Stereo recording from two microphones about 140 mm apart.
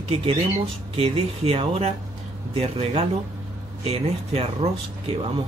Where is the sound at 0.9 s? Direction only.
45° right (ahead or behind).